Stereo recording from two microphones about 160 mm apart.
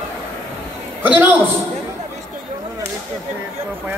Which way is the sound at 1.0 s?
10° right (ahead or behind).